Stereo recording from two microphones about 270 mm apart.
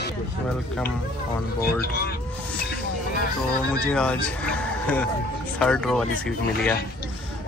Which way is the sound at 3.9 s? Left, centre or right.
Centre.